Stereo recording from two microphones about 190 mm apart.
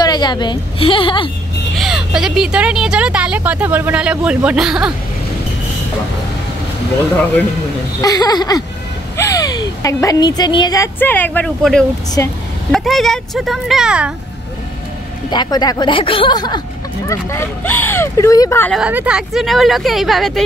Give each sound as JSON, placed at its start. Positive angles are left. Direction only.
{"t": 0.0, "sound": "speech", "side_deg": 20}
{"t": 1.8, "sound": "speech", "side_deg": -5}
{"t": 8.0, "sound": "speech", "side_deg": 20}
{"t": 12.2, "sound": "speech", "side_deg": 15}
{"t": 12.7, "sound": "speech", "side_deg": 0}
{"t": 15.2, "sound": "speech", "side_deg": 20}
{"t": 18.7, "sound": "speech", "side_deg": -5}